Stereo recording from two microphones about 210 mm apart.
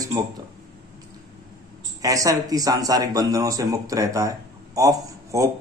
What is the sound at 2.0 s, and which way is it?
A man's voice, 15° right (ahead or behind).